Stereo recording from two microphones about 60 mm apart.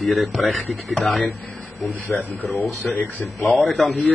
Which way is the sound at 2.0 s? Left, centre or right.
Left.